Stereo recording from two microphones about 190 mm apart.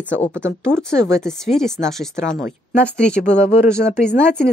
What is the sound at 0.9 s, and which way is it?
Speech, 15° right (ahead or behind).